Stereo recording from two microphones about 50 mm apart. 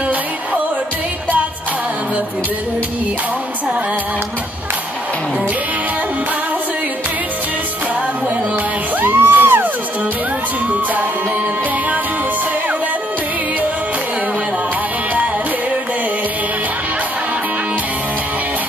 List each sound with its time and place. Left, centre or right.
9.0 s music: right